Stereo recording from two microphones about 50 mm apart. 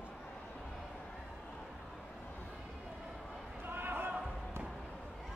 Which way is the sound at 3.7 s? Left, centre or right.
Right.